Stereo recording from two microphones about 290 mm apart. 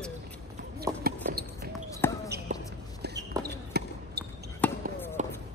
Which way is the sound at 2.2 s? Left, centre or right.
Right.